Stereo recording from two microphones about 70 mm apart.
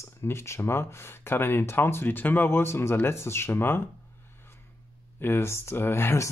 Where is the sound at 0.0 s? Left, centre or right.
Left.